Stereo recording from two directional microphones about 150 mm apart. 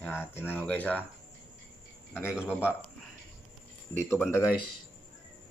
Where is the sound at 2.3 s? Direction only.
5° right (ahead or behind).